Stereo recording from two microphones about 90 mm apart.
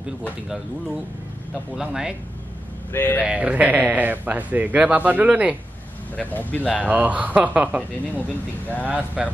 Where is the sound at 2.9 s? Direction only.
25° left (ahead or behind).